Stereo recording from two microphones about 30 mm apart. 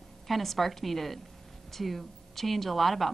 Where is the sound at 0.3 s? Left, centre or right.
Centre.